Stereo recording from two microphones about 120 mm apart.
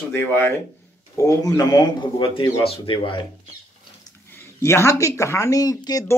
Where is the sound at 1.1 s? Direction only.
30° left (ahead or behind); by 3.1 s 50° left (ahead or behind).